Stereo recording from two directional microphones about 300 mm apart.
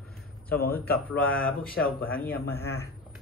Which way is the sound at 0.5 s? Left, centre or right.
Left.